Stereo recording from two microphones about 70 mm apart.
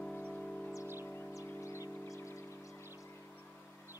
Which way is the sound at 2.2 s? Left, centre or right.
Left.